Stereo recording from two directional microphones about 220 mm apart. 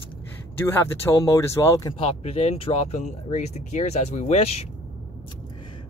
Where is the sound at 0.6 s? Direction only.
10° left (ahead or behind).